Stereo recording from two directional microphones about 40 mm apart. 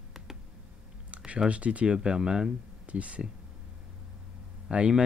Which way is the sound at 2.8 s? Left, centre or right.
Right.